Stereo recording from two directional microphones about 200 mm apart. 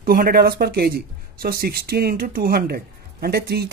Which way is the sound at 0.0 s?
45° right (ahead or behind).